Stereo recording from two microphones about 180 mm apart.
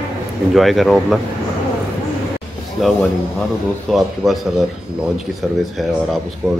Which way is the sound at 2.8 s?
Centre (ahead or behind).